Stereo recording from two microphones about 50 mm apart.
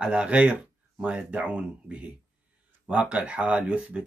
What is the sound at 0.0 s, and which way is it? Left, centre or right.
Speech, right.